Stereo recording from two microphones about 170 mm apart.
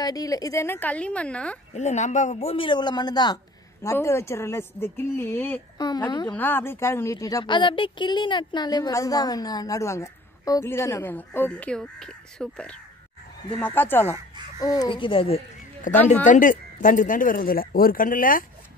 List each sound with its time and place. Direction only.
0.0 s a woman's voice: 20° left (ahead or behind)
1.7 s a man's voice: 40° left (ahead or behind); by 5.6 s 15° left (ahead or behind)
5.8 s speech: 25° left (ahead or behind)
6.3 s a woman's voice: 10° left (ahead or behind)
14.6 s speech: 25° left (ahead or behind)
15.9 s speech: 50° left (ahead or behind)